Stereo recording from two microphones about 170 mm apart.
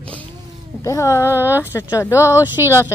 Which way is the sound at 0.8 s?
20° left (ahead or behind).